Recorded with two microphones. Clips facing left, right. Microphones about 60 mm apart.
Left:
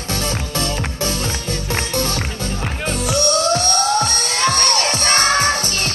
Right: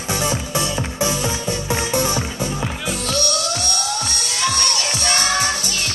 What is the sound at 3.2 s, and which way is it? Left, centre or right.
Music, left.